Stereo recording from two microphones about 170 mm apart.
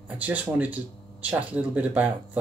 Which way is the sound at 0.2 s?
10° right (ahead or behind).